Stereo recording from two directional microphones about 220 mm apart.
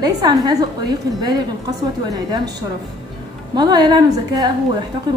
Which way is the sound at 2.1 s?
15° right (ahead or behind).